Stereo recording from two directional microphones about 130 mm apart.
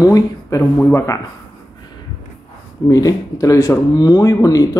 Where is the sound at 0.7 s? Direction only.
15° left (ahead or behind).